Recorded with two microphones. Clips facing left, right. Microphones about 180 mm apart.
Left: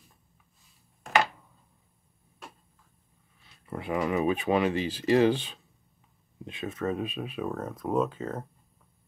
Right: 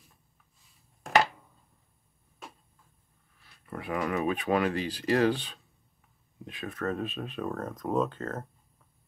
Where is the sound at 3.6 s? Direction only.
20° left (ahead or behind).